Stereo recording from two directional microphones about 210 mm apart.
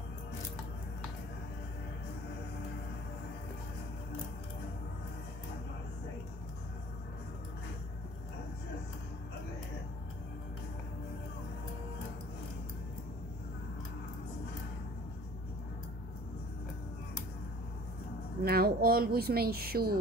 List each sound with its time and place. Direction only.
18.4 s speech: 45° right (ahead or behind)